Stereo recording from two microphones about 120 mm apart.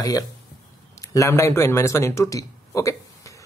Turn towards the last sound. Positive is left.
turn(degrees=25)  # may be behind; listen again after turning